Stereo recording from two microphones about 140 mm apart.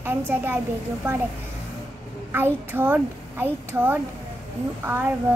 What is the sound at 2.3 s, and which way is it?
A woman's voice, 15° right (ahead or behind).